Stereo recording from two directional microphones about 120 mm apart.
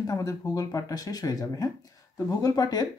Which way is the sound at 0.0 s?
30° left (ahead or behind).